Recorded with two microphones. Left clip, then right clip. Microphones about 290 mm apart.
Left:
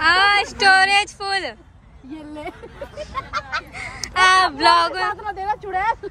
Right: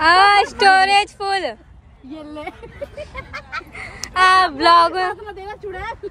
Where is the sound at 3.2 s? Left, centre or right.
Centre.